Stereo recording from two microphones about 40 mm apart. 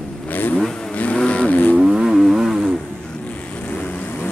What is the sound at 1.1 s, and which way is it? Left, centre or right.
Vehicle, left.